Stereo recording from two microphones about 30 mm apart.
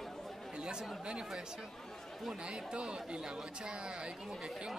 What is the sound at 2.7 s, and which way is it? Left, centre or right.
Speech, right.